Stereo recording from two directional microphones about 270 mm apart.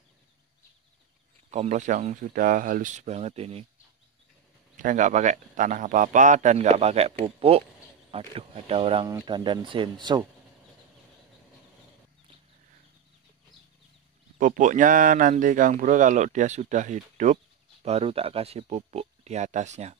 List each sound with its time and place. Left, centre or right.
1.5 s speech: right
4.7 s speech: right
14.4 s speech: right